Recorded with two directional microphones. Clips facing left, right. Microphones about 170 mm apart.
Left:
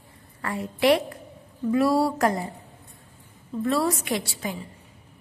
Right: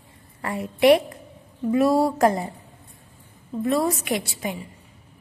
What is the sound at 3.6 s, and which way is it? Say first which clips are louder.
Speech: right 2 dB; 20° right (ahead or behind).